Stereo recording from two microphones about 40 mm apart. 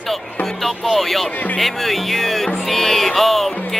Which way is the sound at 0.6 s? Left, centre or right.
Centre.